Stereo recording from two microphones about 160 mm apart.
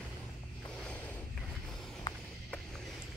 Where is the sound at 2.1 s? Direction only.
25° left (ahead or behind).